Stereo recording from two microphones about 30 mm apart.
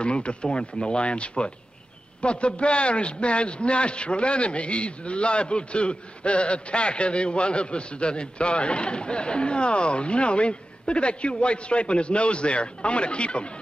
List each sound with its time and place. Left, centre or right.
0.0 s a man's voice: left